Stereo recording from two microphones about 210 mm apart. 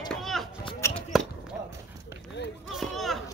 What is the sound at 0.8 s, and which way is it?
Basketball bounce, 10° left (ahead or behind).